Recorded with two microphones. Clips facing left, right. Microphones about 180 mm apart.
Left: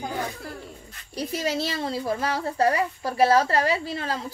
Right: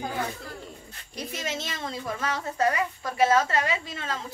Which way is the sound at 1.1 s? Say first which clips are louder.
Left 6 dB; 35° left (ahead or behind).